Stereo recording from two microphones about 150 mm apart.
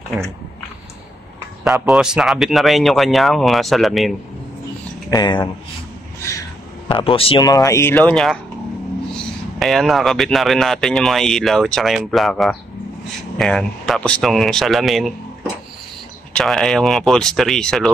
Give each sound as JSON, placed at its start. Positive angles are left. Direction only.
{"t": 1.6, "sound": "speech", "side_deg": -5}
{"t": 5.1, "sound": "speech", "side_deg": 30}
{"t": 6.2, "sound": "a sound", "side_deg": 15}
{"t": 6.9, "sound": "speech", "side_deg": 35}
{"t": 7.4, "sound": "speech", "side_deg": 20}
{"t": 9.6, "sound": "speech", "side_deg": 0}
{"t": 16.3, "sound": "speech", "side_deg": 0}